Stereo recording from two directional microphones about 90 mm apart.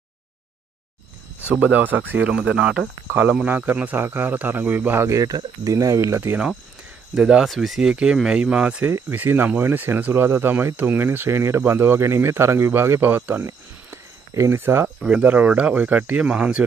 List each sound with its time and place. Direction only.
1.4 s speech: 15° right (ahead or behind)
3.1 s speech: 20° right (ahead or behind)
7.2 s speech: 5° right (ahead or behind)
13.8 s a sound: 30° right (ahead or behind)
15.0 s speech: 15° right (ahead or behind)